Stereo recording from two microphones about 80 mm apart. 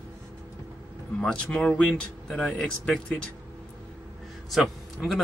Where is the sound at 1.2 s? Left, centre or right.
Centre.